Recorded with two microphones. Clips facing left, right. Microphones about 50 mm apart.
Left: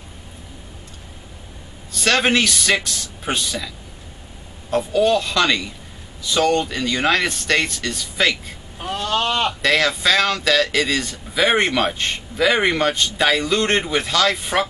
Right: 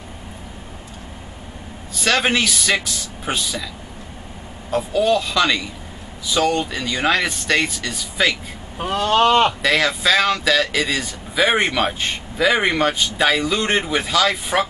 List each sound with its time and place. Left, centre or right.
2.0 s a man's voice: centre
8.9 s speech: right
9.6 s a man's voice: centre